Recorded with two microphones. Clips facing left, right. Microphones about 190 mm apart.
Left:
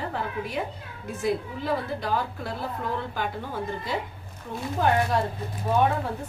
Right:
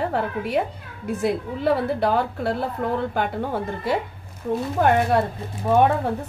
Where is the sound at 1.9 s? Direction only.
65° right (ahead or behind).